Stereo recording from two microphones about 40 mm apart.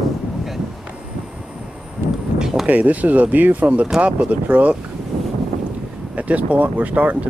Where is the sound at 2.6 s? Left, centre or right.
Right.